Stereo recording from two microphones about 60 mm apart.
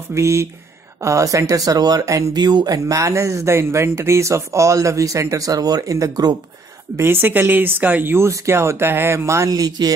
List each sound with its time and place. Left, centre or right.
0.1 s speech: right
7.0 s speech: right
8.3 s speech: right
9.5 s speech: right